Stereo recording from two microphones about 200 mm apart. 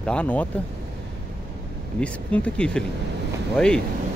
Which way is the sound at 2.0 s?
5° left (ahead or behind).